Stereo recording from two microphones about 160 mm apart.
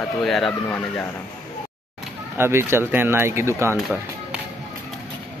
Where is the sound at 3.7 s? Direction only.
5° right (ahead or behind).